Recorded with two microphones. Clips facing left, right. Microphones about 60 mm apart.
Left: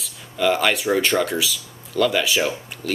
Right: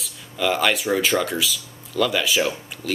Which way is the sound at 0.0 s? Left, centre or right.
Centre.